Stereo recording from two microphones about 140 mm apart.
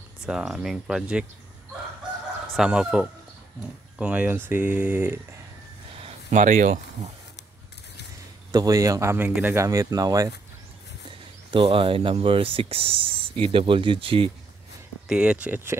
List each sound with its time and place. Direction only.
0.3 s speech: 5° right (ahead or behind)
2.5 s speech: 5° right (ahead or behind)
6.0 s speech: 55° right (ahead or behind)
8.5 s speech: 25° right (ahead or behind)
11.5 s speech: 40° right (ahead or behind)
15.0 s speech: 5° right (ahead or behind)